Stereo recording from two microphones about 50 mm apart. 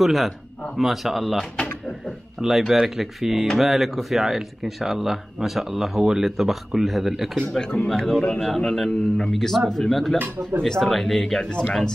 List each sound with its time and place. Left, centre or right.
0.0 s speech: centre
2.4 s speech: centre
7.6 s speech: centre
10.1 s speech: right
10.6 s speech: centre